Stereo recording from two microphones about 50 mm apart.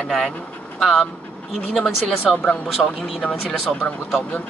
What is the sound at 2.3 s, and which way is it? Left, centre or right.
Speech, centre.